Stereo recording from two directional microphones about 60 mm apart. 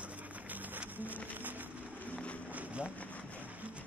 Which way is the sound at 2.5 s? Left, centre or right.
Right.